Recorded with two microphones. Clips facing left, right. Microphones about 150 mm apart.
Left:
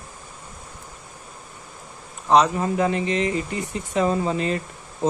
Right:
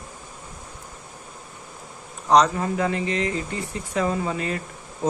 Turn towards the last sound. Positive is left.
turn(degrees=25)  # may be behind; listen again after turning